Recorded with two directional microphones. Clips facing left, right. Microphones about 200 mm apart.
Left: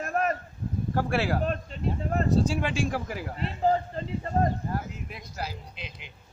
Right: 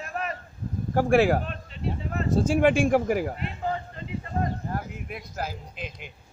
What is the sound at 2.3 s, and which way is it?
Speech, 55° right (ahead or behind).